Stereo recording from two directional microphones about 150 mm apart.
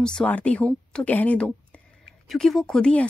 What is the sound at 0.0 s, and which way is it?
A woman's voice, 5° left (ahead or behind).